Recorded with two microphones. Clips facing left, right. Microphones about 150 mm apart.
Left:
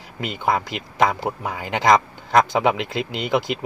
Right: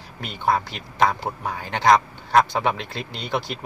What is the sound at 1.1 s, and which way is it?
Speech, 90° left.